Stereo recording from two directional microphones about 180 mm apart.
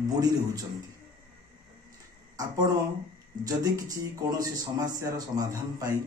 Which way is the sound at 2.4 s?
20° right (ahead or behind).